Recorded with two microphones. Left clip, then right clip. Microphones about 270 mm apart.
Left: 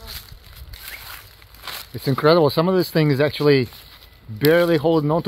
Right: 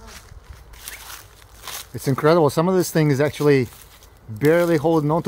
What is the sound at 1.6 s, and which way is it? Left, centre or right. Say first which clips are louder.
Speech: left 1 dB; centre.